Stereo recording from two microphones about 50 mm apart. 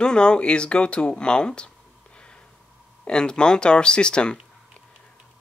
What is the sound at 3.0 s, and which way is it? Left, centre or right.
Speech, centre.